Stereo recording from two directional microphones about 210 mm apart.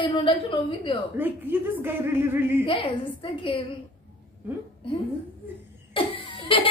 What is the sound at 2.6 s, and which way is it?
A woman's voice, 25° left (ahead or behind).